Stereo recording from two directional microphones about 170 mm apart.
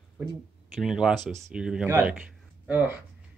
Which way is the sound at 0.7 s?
5° right (ahead or behind).